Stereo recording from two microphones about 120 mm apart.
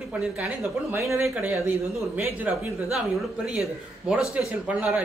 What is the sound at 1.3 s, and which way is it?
A man's voice, 15° right (ahead or behind).